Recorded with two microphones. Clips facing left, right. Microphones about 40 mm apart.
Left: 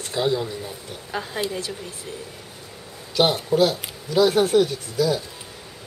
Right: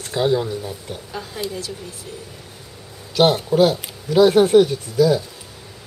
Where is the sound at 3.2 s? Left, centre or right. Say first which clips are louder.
Right 4 dB; centre.